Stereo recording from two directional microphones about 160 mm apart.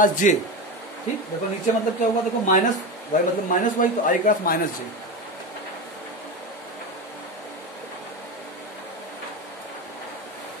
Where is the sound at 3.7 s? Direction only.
55° left (ahead or behind).